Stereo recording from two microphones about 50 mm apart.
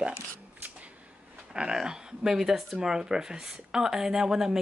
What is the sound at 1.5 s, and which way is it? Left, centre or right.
Speech, centre.